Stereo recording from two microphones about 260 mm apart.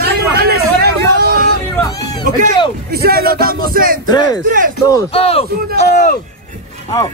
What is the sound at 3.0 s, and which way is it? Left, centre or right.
Speech, right.